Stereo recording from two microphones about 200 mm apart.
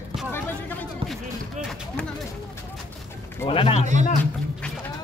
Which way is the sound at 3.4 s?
30° left (ahead or behind).